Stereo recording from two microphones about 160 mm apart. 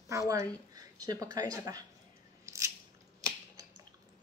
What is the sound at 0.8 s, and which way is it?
Speech, 25° right (ahead or behind).